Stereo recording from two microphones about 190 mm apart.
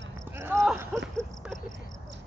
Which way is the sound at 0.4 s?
15° right (ahead or behind).